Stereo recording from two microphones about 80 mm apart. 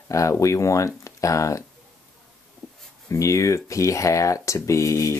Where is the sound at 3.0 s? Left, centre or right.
Left.